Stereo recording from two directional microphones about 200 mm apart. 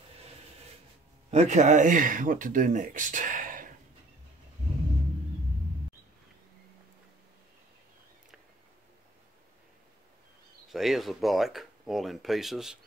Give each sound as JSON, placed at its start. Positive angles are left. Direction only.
{"t": 1.3, "sound": "speech", "side_deg": -35}
{"t": 10.7, "sound": "speech", "side_deg": 0}